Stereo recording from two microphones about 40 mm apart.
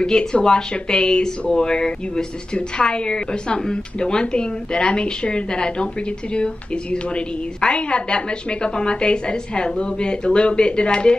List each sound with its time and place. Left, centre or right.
0.0 s a woman's voice: centre